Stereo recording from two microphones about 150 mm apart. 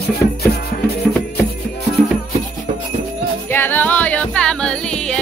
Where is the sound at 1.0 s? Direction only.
10° left (ahead or behind).